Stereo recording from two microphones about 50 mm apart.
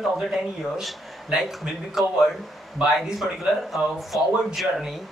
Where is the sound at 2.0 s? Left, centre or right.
Centre.